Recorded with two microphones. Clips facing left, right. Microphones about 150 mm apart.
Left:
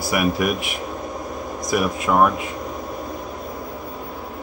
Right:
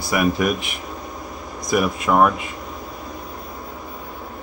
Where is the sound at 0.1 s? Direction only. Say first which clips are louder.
Right 1 dB; 5° left (ahead or behind).